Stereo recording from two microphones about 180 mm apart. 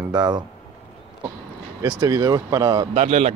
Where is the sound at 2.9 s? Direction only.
35° right (ahead or behind).